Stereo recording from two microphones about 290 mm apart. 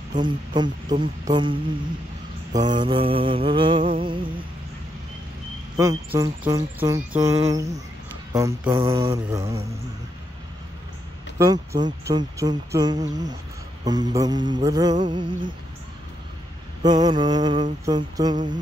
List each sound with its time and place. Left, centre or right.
0.1 s speech: centre
3.8 s a sound: right
5.8 s speech: centre
11.3 s speech: centre
16.8 s speech: centre